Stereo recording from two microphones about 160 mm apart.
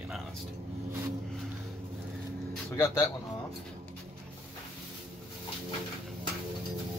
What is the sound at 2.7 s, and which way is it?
Speech, 20° left (ahead or behind).